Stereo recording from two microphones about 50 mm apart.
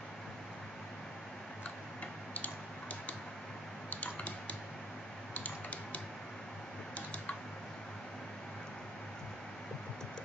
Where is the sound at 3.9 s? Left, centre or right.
Left.